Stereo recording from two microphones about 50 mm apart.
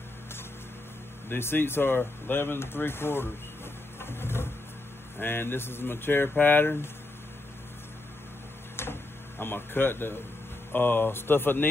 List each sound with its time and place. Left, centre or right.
1.3 s speech: left
4.0 s a sound: left
5.2 s speech: left
9.4 s speech: left